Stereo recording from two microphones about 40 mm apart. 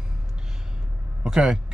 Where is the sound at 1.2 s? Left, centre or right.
Centre.